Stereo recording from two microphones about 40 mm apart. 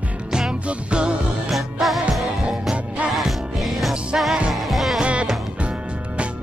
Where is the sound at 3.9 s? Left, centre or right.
Right.